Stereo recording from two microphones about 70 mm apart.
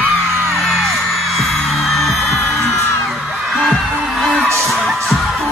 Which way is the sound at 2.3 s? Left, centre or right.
Left.